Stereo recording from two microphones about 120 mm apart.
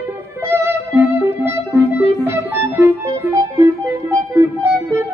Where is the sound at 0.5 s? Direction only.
20° right (ahead or behind).